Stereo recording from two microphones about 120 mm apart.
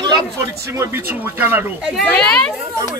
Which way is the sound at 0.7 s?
20° right (ahead or behind).